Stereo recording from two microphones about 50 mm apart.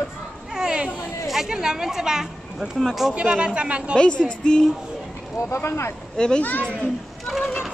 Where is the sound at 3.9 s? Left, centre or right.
Centre.